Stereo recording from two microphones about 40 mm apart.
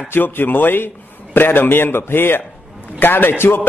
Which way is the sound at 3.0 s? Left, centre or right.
Left.